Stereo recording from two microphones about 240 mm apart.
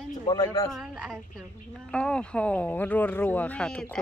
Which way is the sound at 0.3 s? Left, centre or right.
Centre.